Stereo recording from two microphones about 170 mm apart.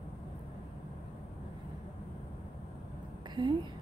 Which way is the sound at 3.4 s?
25° right (ahead or behind).